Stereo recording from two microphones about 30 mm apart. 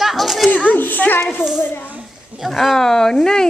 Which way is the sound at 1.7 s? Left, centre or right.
Left.